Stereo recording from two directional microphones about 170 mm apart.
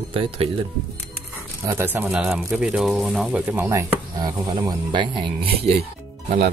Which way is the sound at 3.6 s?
20° right (ahead or behind).